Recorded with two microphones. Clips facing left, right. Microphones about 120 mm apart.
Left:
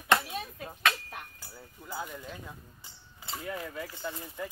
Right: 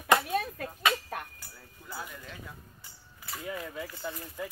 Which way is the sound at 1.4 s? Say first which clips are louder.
Left 3 dB; 15° left (ahead or behind).